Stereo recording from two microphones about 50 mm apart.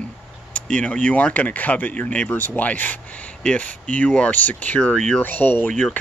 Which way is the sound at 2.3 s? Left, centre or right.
Left.